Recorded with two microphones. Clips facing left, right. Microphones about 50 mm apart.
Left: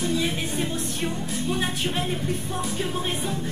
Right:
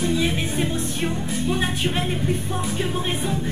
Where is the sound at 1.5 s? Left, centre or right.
Centre.